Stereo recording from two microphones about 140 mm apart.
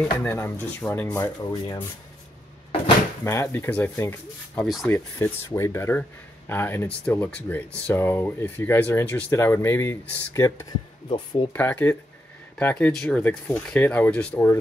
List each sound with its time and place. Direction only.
0.2 s speech: 15° left (ahead or behind)
1.4 s speech: 25° left (ahead or behind)
3.3 s speech: 20° left (ahead or behind)
11.1 s speech: 35° left (ahead or behind)
11.5 s speech: 10° left (ahead or behind)